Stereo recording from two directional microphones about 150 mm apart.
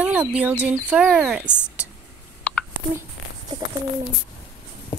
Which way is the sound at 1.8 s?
10° right (ahead or behind).